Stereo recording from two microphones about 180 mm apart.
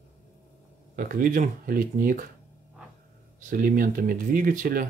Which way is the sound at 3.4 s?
50° right (ahead or behind).